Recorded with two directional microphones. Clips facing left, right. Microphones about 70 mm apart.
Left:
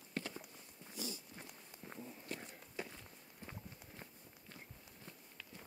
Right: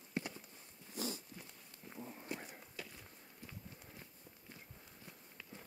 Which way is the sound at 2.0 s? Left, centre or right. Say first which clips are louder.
Right 3 dB; right.